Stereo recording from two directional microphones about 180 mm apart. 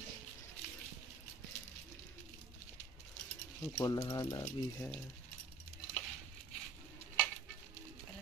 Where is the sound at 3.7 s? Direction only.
25° left (ahead or behind).